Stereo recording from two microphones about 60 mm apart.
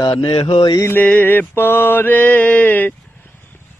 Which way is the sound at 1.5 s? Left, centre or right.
Left.